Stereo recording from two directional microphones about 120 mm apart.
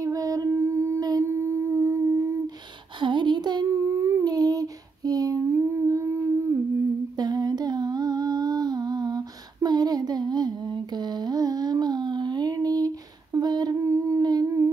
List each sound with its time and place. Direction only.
0.0 s humming: 30° right (ahead or behind)
3.0 s child singing: 40° right (ahead or behind); by 6.6 s 20° right (ahead or behind)
7.2 s humming: 35° right (ahead or behind)
13.8 s humming: 25° right (ahead or behind)